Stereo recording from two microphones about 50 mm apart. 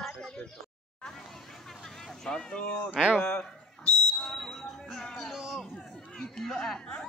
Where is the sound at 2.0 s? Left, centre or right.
Centre.